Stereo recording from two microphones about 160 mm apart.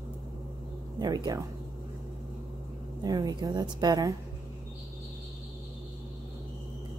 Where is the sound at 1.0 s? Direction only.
25° right (ahead or behind).